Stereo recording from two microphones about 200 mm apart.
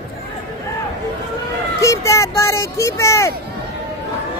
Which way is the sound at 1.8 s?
15° left (ahead or behind).